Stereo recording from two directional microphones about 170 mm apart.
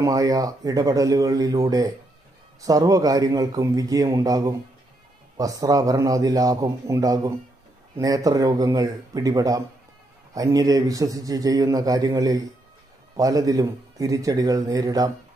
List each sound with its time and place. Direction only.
0.0 s a man's voice: 20° right (ahead or behind)